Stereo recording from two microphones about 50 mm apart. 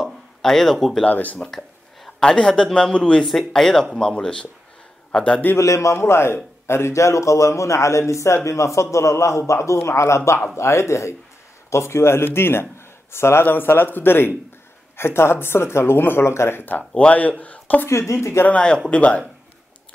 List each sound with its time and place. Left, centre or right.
0.0 s a sound: centre
1.0 s speech: left
2.0 s a sound: centre
2.4 s a man's voice: centre
5.6 s a man's voice: left
8.5 s a man's voice: left
16.6 s speech: left
17.8 s speech: left
18.5 s a man's voice: centre